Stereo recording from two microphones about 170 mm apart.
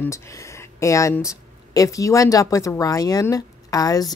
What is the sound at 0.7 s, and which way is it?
A woman's voice, 20° left (ahead or behind).